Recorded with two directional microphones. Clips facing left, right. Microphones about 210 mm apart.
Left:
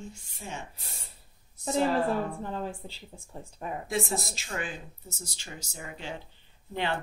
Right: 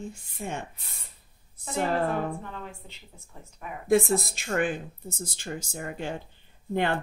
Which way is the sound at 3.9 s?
55° right (ahead or behind).